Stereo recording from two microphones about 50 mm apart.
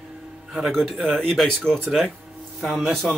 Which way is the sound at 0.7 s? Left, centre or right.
Centre.